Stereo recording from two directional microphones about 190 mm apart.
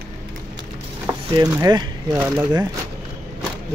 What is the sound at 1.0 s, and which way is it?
Speech, 15° right (ahead or behind).